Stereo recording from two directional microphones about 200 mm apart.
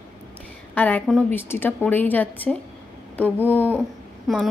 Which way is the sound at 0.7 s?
10° left (ahead or behind).